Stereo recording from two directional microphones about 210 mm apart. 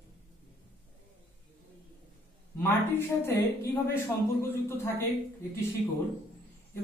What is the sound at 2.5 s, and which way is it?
A man's voice, 10° left (ahead or behind).